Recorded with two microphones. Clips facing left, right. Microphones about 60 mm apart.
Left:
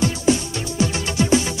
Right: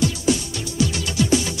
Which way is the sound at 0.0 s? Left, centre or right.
Left.